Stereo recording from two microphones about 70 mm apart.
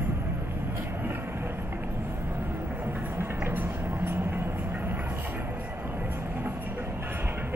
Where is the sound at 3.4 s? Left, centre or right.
Right.